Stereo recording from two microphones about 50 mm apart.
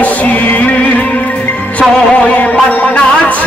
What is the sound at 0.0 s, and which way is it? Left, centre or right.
Music, left.